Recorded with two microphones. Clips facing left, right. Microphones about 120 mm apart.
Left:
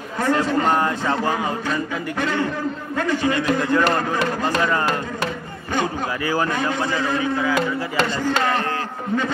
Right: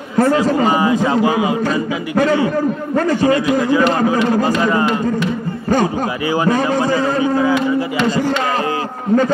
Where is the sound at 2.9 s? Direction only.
40° right (ahead or behind).